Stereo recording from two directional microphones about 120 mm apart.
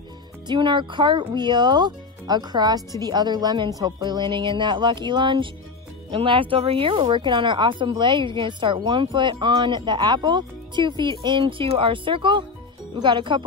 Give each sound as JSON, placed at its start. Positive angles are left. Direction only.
{"t": 0.5, "sound": "speech", "side_deg": -40}